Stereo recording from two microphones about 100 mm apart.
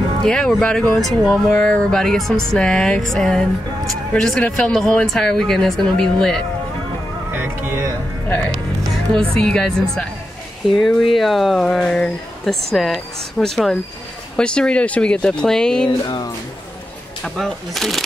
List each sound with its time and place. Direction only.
0.2 s speech: 5° left (ahead or behind)
7.3 s music: 20° right (ahead or behind)
8.5 s music: 5° left (ahead or behind)
9.4 s speech: 5° left (ahead or behind)
17.2 s speech: 5° left (ahead or behind)